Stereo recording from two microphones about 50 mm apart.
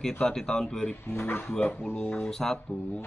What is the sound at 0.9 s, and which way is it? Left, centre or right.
Speech, left.